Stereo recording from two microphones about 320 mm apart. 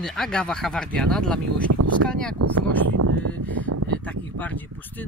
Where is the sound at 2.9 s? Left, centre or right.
Right.